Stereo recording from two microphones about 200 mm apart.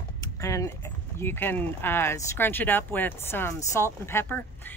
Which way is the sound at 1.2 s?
10° left (ahead or behind).